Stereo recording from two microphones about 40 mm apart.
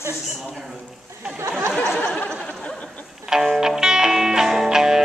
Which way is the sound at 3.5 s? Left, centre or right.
Centre.